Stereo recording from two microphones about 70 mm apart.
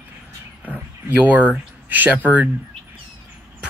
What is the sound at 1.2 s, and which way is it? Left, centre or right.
Speech, right.